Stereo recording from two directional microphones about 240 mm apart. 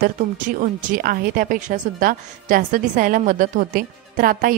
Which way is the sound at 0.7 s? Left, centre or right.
Right.